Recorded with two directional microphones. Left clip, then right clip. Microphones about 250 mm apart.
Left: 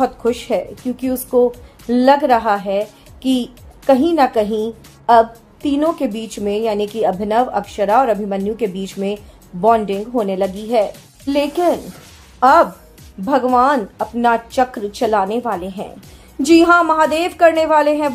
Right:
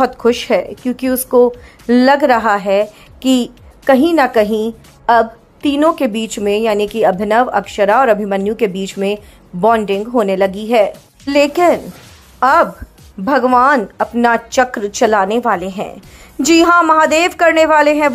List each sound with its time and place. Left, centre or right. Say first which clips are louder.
0.0 s a woman's voice: right 4 dB; centre